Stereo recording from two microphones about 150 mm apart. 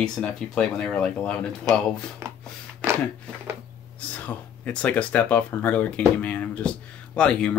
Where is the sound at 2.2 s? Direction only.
20° right (ahead or behind).